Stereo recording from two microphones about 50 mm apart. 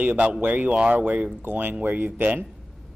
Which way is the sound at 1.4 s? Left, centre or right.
Right.